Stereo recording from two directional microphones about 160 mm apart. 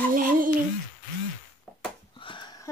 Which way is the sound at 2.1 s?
30° left (ahead or behind).